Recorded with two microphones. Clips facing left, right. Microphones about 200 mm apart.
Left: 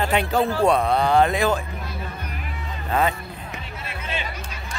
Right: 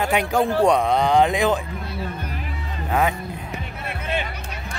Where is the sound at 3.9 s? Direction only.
55° right (ahead or behind).